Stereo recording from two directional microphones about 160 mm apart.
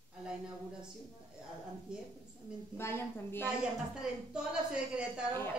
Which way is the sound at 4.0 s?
5° right (ahead or behind).